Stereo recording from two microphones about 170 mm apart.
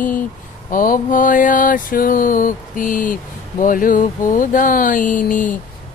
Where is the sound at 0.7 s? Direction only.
55° left (ahead or behind).